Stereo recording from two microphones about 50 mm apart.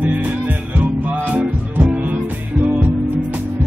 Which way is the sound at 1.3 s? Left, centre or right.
Right.